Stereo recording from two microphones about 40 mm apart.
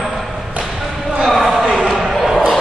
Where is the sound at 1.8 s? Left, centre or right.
Centre.